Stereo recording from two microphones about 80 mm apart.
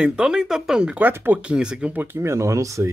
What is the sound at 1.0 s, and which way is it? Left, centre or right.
Speech, right.